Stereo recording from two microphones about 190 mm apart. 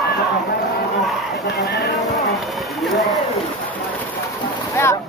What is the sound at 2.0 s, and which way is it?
Music, centre (ahead or behind).